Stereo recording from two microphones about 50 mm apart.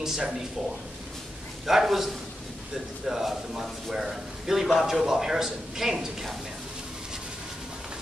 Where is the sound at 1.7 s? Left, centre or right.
Centre.